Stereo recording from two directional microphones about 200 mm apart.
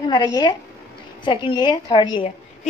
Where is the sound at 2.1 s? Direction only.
30° left (ahead or behind).